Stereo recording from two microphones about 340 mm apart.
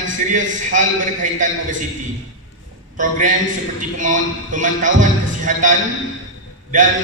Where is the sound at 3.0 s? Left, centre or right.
Right.